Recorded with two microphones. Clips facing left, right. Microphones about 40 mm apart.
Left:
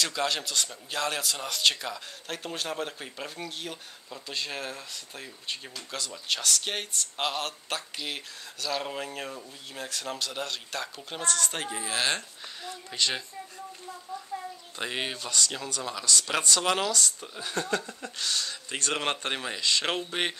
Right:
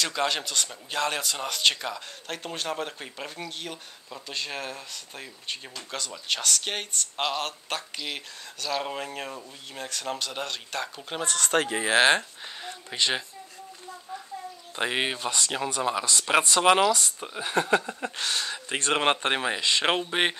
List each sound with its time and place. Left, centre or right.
0.0 s speech: centre
11.0 s speech: centre
11.5 s speech: right
11.8 s speech: right
12.6 s speech: right
14.3 s a sound: left
14.8 s speech: right